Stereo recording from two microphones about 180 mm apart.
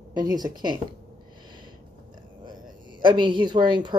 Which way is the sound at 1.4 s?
25° right (ahead or behind).